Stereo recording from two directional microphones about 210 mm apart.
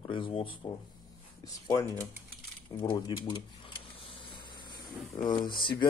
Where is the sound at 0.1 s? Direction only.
25° left (ahead or behind).